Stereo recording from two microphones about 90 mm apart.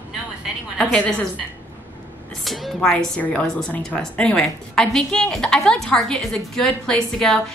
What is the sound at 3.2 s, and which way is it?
A woman's voice, 15° left (ahead or behind).